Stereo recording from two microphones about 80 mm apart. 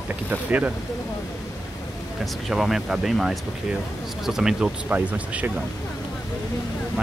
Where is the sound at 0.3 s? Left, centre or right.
Right.